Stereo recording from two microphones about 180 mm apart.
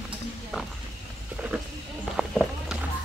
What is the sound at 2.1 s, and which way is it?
Run, centre (ahead or behind).